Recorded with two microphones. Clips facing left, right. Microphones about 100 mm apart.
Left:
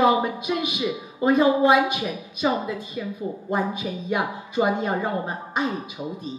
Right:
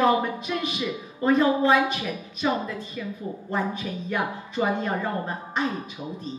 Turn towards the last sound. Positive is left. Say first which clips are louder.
# left 2 dB
turn(degrees=10)  # may be behind; listen again after turning